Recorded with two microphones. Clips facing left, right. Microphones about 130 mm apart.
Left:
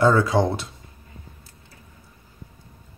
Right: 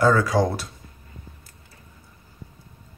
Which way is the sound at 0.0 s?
25° left (ahead or behind).